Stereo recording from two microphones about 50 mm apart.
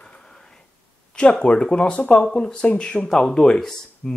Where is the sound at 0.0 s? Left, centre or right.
Centre.